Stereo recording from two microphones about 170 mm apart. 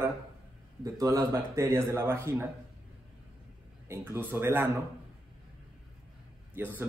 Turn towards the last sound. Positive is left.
turn(degrees=-10)  # may be behind; listen again after turning